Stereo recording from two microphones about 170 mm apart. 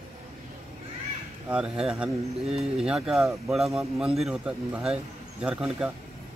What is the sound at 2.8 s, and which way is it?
Speech, 5° right (ahead or behind).